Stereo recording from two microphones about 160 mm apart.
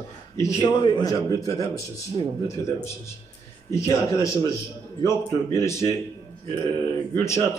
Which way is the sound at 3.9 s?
20° left (ahead or behind).